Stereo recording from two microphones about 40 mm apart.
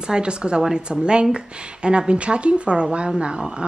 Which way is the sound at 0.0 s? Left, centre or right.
Right.